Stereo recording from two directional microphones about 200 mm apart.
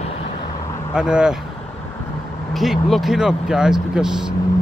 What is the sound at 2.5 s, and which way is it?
Speech, centre (ahead or behind).